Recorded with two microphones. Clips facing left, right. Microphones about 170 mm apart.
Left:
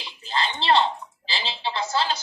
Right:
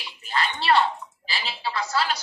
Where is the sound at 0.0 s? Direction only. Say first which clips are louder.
Even; 25° left (ahead or behind).